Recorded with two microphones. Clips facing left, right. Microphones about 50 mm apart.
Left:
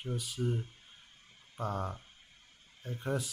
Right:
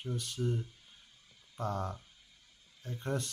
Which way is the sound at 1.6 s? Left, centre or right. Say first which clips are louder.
Even; centre.